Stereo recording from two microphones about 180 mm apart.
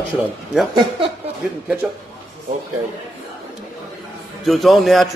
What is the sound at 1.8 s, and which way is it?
Speech, 5° right (ahead or behind).